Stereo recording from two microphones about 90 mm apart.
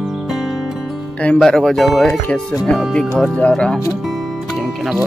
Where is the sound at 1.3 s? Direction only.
Centre (ahead or behind).